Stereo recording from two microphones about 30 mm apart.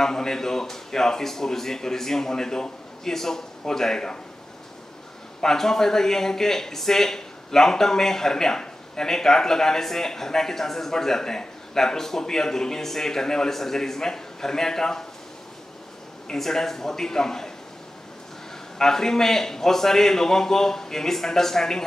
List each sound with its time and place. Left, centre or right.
0.0 s speech: centre
5.4 s speech: centre
16.3 s speech: centre
18.8 s speech: centre